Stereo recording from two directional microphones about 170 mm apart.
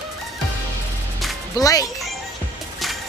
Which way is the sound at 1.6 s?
20° left (ahead or behind).